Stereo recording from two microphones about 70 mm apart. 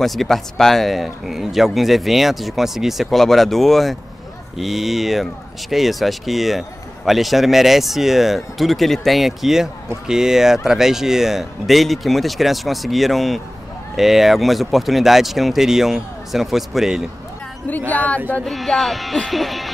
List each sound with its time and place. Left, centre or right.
0.0 s speech: centre
17.6 s speech: left
18.4 s speech: centre